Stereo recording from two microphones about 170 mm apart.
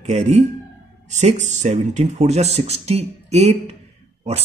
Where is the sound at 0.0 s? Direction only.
45° right (ahead or behind).